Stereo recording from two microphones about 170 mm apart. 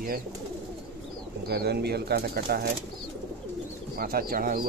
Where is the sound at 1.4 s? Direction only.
70° right (ahead or behind).